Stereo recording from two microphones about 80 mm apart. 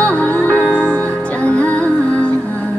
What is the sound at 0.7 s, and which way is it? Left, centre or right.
Music, right.